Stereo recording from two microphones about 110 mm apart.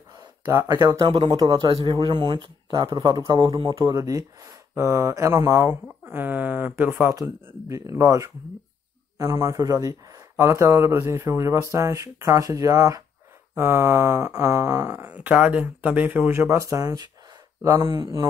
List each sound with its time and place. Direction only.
0.5 s a man's voice: 30° right (ahead or behind)
3.5 s a man's voice: 45° right (ahead or behind); by 7.2 s 20° right (ahead or behind)
7.6 s a man's voice: 30° right (ahead or behind)
9.4 s a man's voice: 35° right (ahead or behind)
15.1 s speech: 10° right (ahead or behind)
16.7 s speech: 35° right (ahead or behind)